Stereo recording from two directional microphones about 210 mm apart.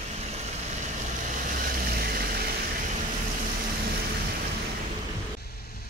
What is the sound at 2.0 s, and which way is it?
Vehicle, 45° right (ahead or behind).